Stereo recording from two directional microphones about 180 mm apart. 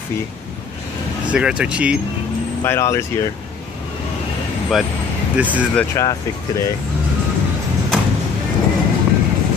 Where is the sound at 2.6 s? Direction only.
15° left (ahead or behind).